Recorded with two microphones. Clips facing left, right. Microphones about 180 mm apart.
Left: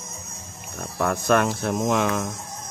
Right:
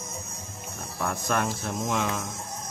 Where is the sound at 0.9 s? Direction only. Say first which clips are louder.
Left 7 dB; 70° left (ahead or behind).